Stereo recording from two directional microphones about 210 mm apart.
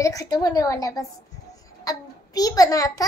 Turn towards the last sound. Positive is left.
turn(degrees=15)  # may be behind; listen again after turning